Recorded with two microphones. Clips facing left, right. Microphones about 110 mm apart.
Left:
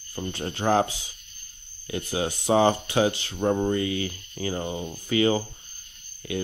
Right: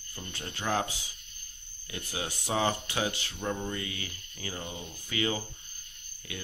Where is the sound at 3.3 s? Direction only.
40° left (ahead or behind).